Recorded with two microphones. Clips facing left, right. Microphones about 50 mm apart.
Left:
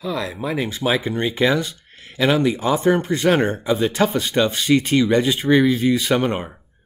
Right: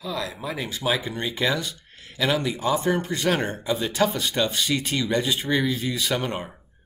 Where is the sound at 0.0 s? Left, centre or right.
Left.